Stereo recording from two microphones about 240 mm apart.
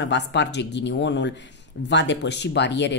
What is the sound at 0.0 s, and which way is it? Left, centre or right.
Speech, left.